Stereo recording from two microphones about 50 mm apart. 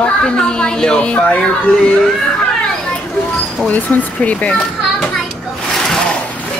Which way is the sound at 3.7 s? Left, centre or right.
Left.